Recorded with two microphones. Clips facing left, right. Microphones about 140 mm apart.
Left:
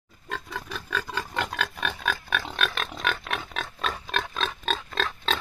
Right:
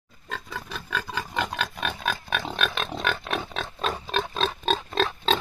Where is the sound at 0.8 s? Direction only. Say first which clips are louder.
Right 1 dB; 10° right (ahead or behind).